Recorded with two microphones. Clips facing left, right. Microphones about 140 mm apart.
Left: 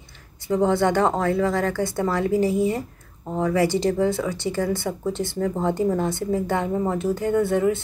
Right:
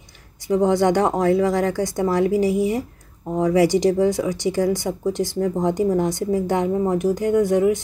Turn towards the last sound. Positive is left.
turn(degrees=-15)  # may be behind; listen again after turning